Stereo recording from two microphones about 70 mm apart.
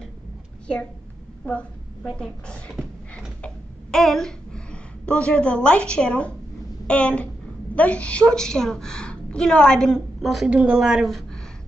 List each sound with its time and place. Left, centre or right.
1.4 s a woman's voice: centre
10.2 s speech: centre
10.5 s speech: centre
10.9 s speech: centre